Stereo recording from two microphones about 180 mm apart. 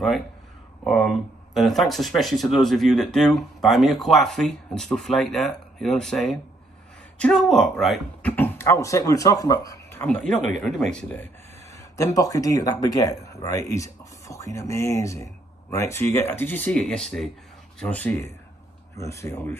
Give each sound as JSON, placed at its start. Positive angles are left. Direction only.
{"t": 0.8, "sound": "speech", "side_deg": 0}
{"t": 10.0, "sound": "speech", "side_deg": 5}
{"t": 12.2, "sound": "speech", "side_deg": 20}